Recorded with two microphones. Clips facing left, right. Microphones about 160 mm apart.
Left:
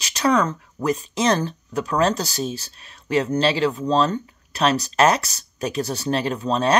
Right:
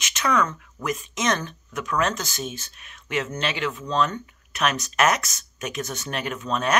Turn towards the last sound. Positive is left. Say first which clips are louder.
# left 5 dB
turn(degrees=30)  # may be behind; listen again after turning